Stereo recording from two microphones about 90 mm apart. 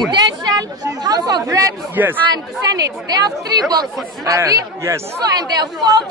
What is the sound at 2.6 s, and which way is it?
Speech, 45° right (ahead or behind).